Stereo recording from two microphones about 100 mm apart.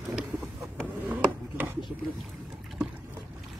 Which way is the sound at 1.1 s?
20° right (ahead or behind).